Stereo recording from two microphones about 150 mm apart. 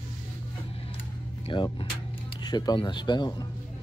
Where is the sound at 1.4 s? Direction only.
35° left (ahead or behind).